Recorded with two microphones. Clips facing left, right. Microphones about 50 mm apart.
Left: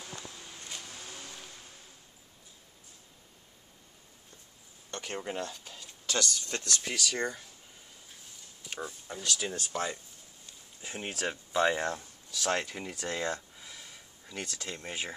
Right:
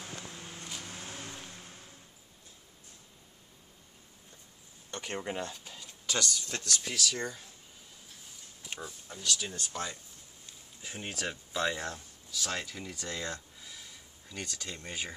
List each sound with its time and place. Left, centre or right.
0.3 s a sound: right
0.7 s a sound: centre
0.9 s vehicle: right
4.9 s speech: centre
6.3 s speech: centre
6.7 s speech: left
8.7 s speech: centre
11.0 s speech: centre
11.5 s speech: left
11.8 s speech: left
13.3 s a sound: centre